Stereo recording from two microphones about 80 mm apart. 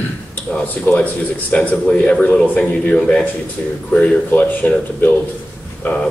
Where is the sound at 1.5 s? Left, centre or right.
Centre.